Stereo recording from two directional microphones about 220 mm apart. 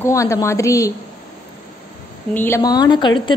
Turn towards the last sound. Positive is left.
turn(degrees=20)  # may be behind; listen again after turning